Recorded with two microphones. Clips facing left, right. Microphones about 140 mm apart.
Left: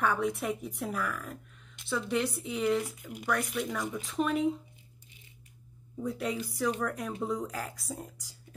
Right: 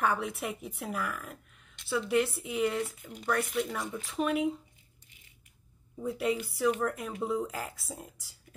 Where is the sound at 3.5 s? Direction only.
5° right (ahead or behind).